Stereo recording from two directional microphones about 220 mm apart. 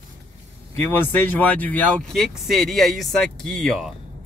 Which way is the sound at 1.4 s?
5° left (ahead or behind).